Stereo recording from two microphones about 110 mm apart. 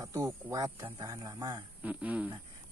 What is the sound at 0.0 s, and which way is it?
A man's voice, 25° right (ahead or behind).